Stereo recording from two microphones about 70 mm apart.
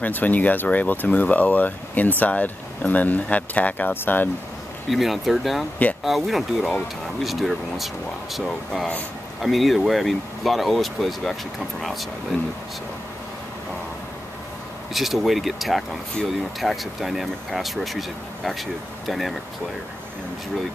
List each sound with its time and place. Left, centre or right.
0.0 s speech: left
4.8 s speech: centre
15.0 s speech: centre